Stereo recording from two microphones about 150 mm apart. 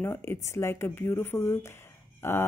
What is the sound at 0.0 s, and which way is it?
A woman's voice, 15° left (ahead or behind).